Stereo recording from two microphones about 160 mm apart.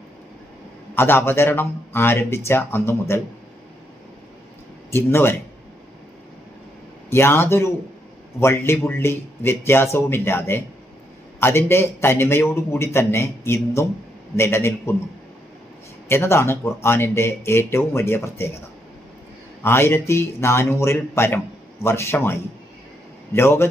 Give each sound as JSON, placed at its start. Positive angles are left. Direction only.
{"t": 0.9, "sound": "a man's voice", "side_deg": 15}
{"t": 4.9, "sound": "a man's voice", "side_deg": 15}
{"t": 7.1, "sound": "a man's voice", "side_deg": 15}
{"t": 16.1, "sound": "a man's voice", "side_deg": 15}
{"t": 19.6, "sound": "a man's voice", "side_deg": 15}